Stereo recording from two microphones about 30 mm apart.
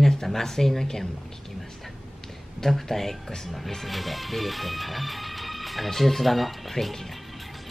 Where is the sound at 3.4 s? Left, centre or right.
Centre.